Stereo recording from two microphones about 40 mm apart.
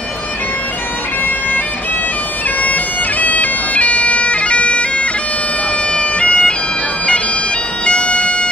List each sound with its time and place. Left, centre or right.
2.6 s bagpipes: left
7.8 s bagpipes: left